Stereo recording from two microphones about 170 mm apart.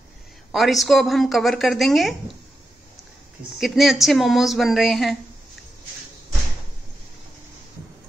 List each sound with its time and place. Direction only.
0.5 s a woman's voice: centre (ahead or behind)
3.5 s a woman's voice: centre (ahead or behind)